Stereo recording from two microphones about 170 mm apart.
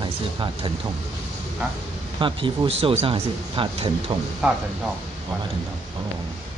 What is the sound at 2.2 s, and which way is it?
Speech, 30° right (ahead or behind).